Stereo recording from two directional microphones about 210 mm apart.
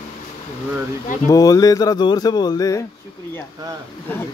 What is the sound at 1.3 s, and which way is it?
Speech, 15° left (ahead or behind).